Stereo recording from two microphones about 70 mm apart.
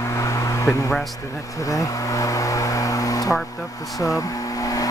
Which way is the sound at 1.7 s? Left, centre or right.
Left.